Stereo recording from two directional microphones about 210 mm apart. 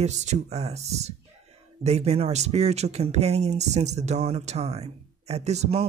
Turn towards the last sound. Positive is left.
turn(degrees=-30)  # may be behind; listen again after turning